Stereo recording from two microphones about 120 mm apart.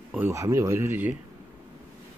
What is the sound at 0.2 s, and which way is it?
Speech, 25° right (ahead or behind).